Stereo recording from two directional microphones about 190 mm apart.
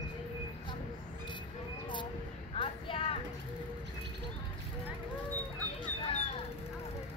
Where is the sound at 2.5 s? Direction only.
30° left (ahead or behind).